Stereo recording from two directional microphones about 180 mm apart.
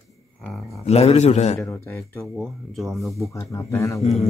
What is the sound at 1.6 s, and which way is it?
Speech, 10° left (ahead or behind).